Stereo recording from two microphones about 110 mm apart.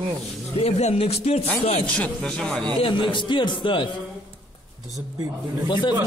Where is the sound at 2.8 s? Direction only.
50° left (ahead or behind).